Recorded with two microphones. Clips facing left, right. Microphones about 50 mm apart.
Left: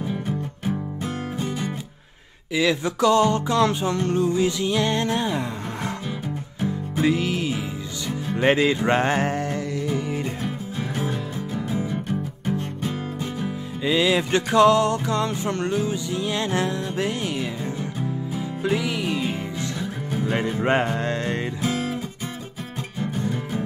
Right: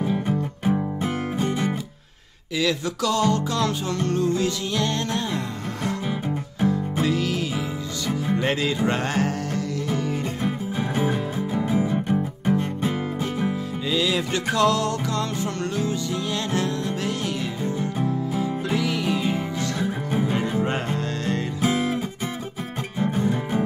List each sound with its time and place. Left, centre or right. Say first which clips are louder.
0.0 s music: right 4 dB; right
2.5 s music: left 2 dB; centre
6.0 s music: right 3 dB; right
7.0 s music: left 5 dB; left
10.4 s music: right 3 dB; right
13.8 s music: left 4 dB; left
17.7 s music: right 3 dB; right
18.6 s music: even; centre
19.8 s music: right 5 dB; right
20.6 s music: left 4 dB; left
21.5 s music: right 3 dB; right